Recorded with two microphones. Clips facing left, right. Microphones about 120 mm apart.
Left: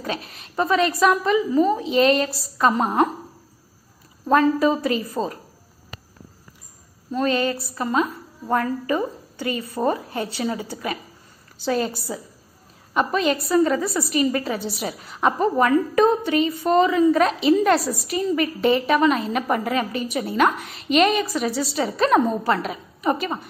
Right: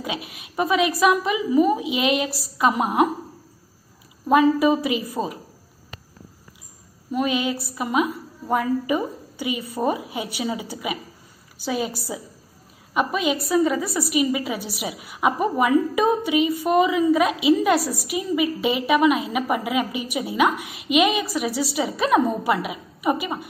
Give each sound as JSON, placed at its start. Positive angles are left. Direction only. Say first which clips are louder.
{"t": 0.0, "sound": "a woman's voice", "louder": "left 1 dB", "side_deg": -5}
{"t": 4.3, "sound": "a woman's voice", "louder": "right 1 dB", "side_deg": -10}
{"t": 7.1, "sound": "a woman's voice", "louder": "left 1 dB", "side_deg": -10}